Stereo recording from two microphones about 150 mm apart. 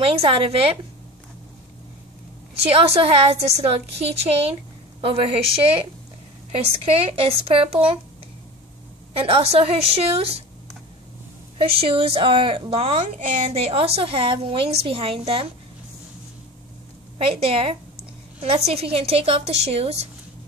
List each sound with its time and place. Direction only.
0.0 s a woman's voice: 40° right (ahead or behind)
2.7 s a woman's voice: 40° right (ahead or behind)
9.1 s a woman's voice: 40° right (ahead or behind)
11.5 s a woman's voice: 40° right (ahead or behind)
17.2 s a woman's voice: 40° right (ahead or behind)